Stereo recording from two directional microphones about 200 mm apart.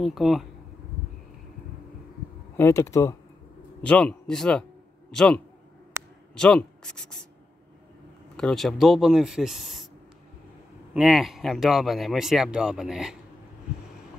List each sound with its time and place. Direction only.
0.0 s speech: centre (ahead or behind)
2.5 s speech: 15° left (ahead or behind)
3.8 s speech: 5° left (ahead or behind)
5.9 s a sound: 15° right (ahead or behind)
6.3 s speech: 5° left (ahead or behind)
8.4 s speech: centre (ahead or behind)
10.9 s speech: 5° right (ahead or behind)